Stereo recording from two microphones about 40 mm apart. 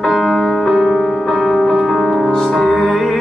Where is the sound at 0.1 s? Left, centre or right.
Centre.